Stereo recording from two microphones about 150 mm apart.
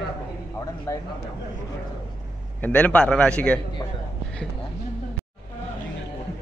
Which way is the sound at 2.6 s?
10° left (ahead or behind).